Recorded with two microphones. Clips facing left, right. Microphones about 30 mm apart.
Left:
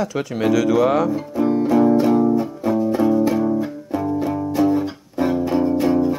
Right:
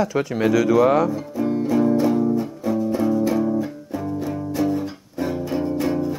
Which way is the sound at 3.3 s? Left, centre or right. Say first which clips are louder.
Left 2 dB; centre.